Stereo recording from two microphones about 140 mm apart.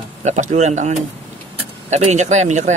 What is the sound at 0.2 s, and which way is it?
Speech, 55° right (ahead or behind).